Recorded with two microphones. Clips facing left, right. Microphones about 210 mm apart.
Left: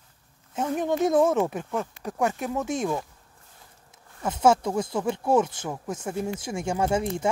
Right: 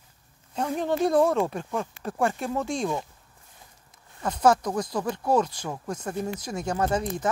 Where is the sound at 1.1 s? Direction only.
Centre (ahead or behind).